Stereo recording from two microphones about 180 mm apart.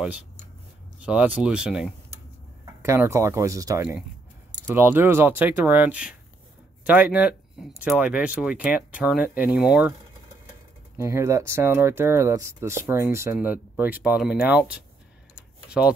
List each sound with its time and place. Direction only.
0.9 s speech: 10° right (ahead or behind)
2.8 s speech: 15° right (ahead or behind)
4.6 s keys jangling: 20° right (ahead or behind)
4.8 s speech: 10° right (ahead or behind)
11.0 s speech: 15° right (ahead or behind)
15.3 s tick-tock: 5° right (ahead or behind)